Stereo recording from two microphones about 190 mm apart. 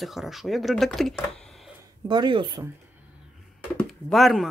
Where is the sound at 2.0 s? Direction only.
25° right (ahead or behind).